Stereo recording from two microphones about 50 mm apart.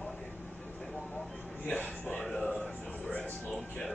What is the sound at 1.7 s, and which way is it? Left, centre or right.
Speech, left.